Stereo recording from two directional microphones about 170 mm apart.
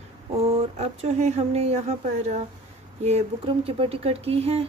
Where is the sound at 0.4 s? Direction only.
35° right (ahead or behind).